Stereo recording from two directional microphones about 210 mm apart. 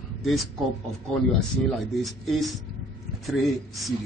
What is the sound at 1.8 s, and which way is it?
A man's voice, centre (ahead or behind).